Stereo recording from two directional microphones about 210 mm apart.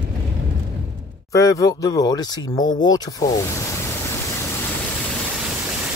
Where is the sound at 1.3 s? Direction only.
15° left (ahead or behind).